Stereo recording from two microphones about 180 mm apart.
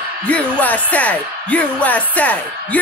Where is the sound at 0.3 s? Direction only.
10° left (ahead or behind).